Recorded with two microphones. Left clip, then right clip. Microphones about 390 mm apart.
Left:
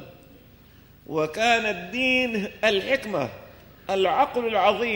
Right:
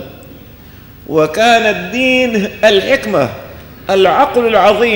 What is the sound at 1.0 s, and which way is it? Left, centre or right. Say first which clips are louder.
Speech: right 12 dB; centre.